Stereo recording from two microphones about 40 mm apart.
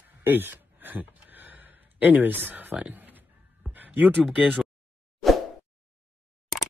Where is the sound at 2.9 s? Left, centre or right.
Right.